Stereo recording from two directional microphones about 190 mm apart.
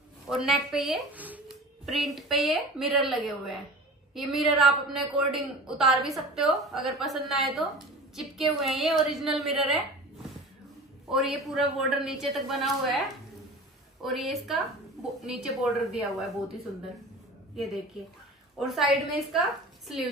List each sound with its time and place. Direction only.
0.3 s a woman's voice: centre (ahead or behind)
11.1 s a woman's voice: centre (ahead or behind)
14.0 s a woman's voice: centre (ahead or behind)
18.8 s a woman's voice: centre (ahead or behind)